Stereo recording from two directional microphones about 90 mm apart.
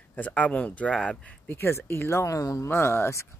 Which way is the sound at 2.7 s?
25° left (ahead or behind).